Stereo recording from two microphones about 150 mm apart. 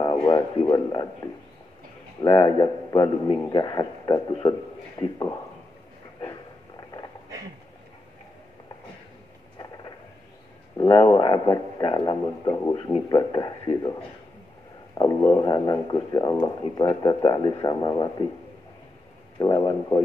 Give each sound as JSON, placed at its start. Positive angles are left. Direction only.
{"t": 0.0, "sound": "a man's voice", "side_deg": 30}
{"t": 6.8, "sound": "a sound", "side_deg": 25}
{"t": 10.9, "sound": "a man's voice", "side_deg": 35}
{"t": 15.0, "sound": "speech", "side_deg": 30}
{"t": 19.3, "sound": "speech", "side_deg": 25}